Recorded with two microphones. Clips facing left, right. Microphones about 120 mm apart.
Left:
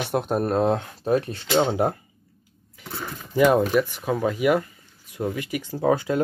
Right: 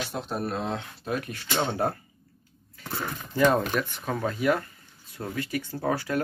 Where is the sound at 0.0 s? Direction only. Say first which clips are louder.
Left 7 dB; 55° left (ahead or behind); by 2.0 s 20° left (ahead or behind).